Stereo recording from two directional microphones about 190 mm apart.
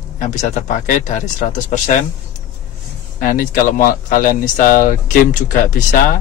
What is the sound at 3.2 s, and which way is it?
Speech, 45° left (ahead or behind).